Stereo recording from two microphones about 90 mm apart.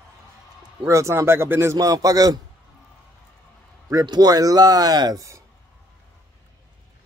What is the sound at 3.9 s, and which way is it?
Speech, 45° right (ahead or behind).